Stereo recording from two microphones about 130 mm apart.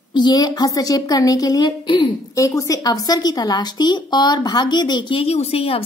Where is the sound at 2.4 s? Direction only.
25° left (ahead or behind).